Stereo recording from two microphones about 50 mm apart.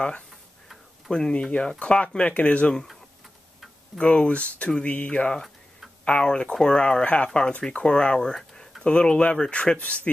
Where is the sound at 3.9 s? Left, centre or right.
Centre.